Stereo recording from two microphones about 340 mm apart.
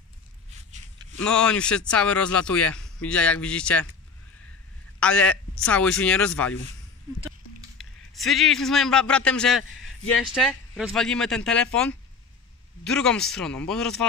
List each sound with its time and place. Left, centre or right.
0.7 s a sound: centre
1.2 s speech: centre
5.0 s speech: centre
7.7 s speech: centre